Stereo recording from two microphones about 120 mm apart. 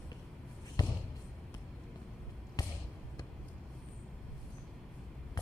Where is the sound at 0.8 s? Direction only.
35° left (ahead or behind).